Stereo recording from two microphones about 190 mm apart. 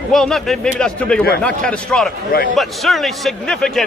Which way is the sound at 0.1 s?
Centre (ahead or behind).